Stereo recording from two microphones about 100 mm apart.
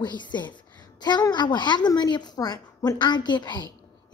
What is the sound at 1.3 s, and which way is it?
A woman's voice, 45° left (ahead or behind).